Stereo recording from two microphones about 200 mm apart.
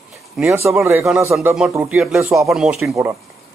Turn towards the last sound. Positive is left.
turn(degrees=-15)  # may be behind; listen again after turning